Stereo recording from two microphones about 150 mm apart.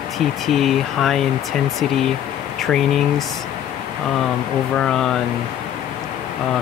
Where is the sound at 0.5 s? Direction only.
Centre (ahead or behind).